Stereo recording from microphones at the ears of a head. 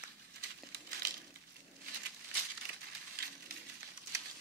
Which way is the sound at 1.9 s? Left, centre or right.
Right.